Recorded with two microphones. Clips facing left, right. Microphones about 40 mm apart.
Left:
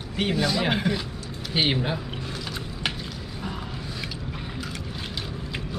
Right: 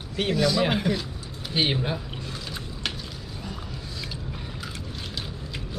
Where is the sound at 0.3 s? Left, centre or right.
Centre.